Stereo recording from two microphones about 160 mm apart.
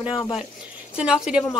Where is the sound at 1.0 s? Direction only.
5° right (ahead or behind).